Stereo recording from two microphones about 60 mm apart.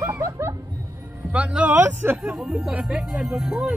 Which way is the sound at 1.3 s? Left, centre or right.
Right.